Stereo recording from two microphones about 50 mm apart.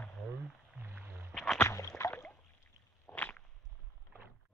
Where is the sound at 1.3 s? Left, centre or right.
Centre.